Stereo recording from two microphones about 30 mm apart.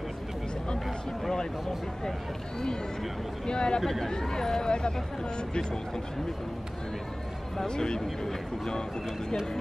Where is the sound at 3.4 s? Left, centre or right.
Left.